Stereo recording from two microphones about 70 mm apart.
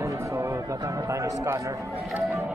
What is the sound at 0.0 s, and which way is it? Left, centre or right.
A man's voice, right.